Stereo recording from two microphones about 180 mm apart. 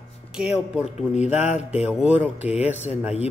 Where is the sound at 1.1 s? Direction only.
40° left (ahead or behind).